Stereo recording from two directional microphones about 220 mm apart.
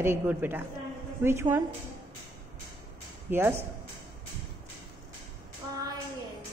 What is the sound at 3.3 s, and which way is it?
Speech, 10° right (ahead or behind).